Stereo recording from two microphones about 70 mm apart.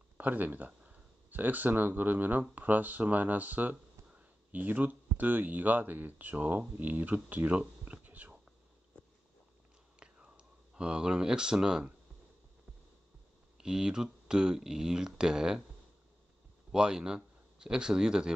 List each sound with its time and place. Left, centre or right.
0.2 s speech: right
9.9 s whispering: centre
13.6 s speech: centre
16.7 s speech: centre